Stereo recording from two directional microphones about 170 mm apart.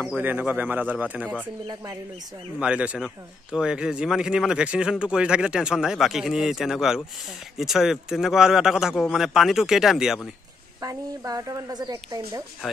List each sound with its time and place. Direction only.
0.0 s speech: 10° right (ahead or behind)
2.6 s speech: 5° right (ahead or behind)
10.8 s a woman's voice: 20° right (ahead or behind)